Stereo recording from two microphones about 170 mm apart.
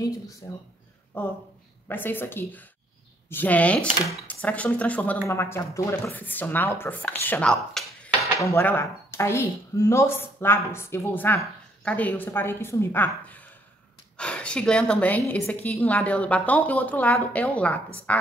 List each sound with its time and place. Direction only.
0.4 s speech: 20° left (ahead or behind); by 8.3 s 5° left (ahead or behind)
8.4 s speech: 15° left (ahead or behind)